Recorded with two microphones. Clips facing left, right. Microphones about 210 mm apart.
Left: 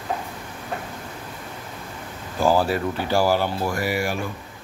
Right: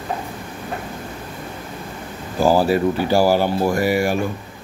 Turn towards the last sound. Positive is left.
turn(degrees=-45)  # may be behind; listen again after turning